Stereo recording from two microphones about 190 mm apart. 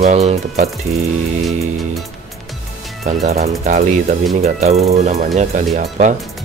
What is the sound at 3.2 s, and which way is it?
Speech, 35° right (ahead or behind).